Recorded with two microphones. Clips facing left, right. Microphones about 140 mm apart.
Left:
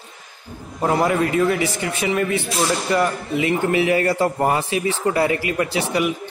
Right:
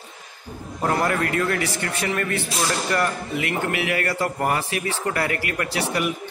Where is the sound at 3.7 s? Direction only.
30° left (ahead or behind).